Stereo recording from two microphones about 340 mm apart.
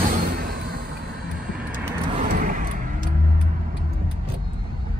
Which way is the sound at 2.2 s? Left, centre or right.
Right.